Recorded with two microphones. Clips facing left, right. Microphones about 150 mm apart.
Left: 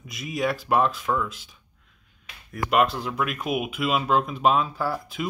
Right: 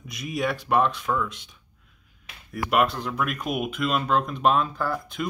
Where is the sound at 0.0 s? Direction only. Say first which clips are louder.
Left 1 dB; centre (ahead or behind).